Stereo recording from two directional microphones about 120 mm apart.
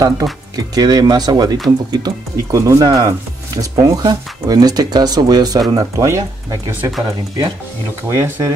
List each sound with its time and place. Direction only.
0.0 s speech: 30° right (ahead or behind)
8.1 s speech: 30° right (ahead or behind)